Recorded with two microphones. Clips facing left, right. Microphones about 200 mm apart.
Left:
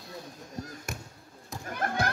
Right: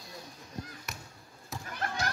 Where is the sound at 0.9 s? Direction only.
45° left (ahead or behind).